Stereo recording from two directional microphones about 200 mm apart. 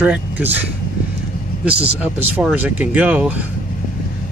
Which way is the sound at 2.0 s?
10° right (ahead or behind).